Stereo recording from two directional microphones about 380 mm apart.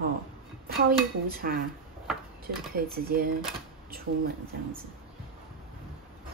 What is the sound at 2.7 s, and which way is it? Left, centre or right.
Speech, right.